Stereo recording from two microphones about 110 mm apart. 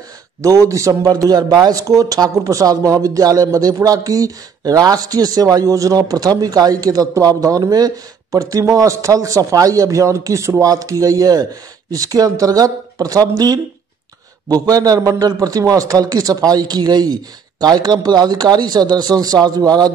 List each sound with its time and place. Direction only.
0.4 s speech: 30° right (ahead or behind)